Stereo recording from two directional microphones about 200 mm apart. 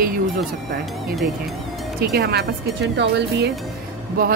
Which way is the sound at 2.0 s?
55° right (ahead or behind).